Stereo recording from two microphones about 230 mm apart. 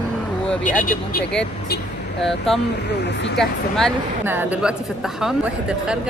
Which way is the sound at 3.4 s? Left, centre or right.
Centre.